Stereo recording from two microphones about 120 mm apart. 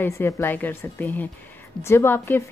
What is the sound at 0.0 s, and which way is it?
A woman's voice, 20° left (ahead or behind).